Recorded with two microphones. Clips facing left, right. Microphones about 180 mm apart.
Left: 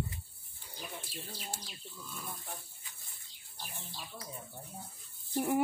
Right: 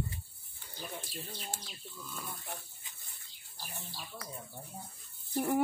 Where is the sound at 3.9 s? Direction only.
5° left (ahead or behind).